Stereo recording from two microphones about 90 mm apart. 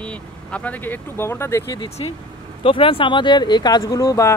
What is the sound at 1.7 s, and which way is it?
Speech, 65° left (ahead or behind).